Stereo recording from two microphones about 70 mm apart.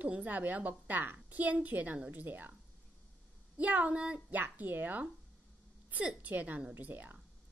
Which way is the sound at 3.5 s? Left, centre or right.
Right.